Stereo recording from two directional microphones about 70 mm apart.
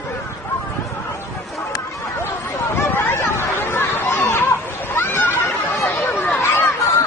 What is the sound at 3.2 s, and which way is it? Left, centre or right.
Chatter, left.